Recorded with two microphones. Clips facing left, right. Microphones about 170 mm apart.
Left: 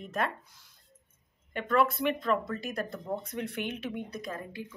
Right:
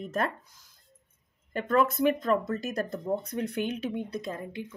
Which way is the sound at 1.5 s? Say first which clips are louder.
Right 2 dB; 40° right (ahead or behind).